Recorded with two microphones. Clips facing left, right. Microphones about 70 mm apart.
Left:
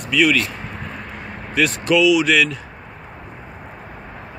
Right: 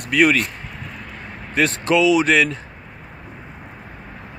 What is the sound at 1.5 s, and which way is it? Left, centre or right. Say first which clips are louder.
Speech: even; right.